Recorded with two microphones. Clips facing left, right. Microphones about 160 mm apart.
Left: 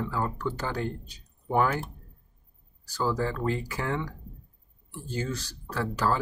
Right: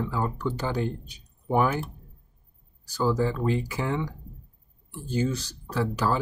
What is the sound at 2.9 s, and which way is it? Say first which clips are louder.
Speech: right 3 dB; 15° right (ahead or behind).